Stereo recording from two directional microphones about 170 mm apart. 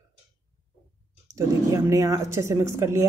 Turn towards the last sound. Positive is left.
turn(degrees=-15)  # may be behind; listen again after turning